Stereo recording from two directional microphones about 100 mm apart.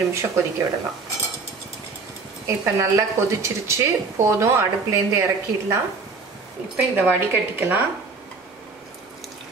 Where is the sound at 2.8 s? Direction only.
30° right (ahead or behind).